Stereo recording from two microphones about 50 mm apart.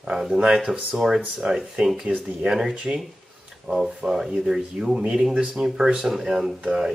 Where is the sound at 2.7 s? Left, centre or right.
Right.